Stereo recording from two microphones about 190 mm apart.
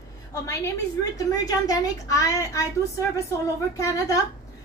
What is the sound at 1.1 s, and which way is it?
A woman's voice, 20° left (ahead or behind).